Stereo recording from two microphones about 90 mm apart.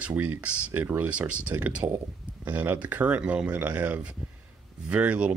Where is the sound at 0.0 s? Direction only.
15° right (ahead or behind).